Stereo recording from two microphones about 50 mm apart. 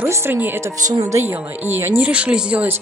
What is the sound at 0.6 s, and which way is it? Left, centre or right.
Speech, right.